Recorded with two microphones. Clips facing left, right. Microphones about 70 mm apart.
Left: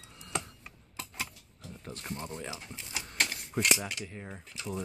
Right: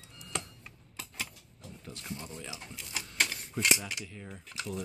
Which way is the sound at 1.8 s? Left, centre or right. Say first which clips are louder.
Left 3 dB; left.